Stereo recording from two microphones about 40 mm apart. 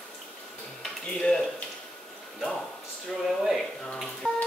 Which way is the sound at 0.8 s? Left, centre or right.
Centre.